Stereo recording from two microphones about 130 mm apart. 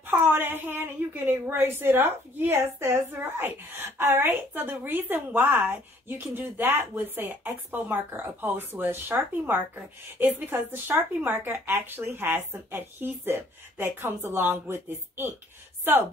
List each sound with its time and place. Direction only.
0.0 s a woman's voice: 15° right (ahead or behind)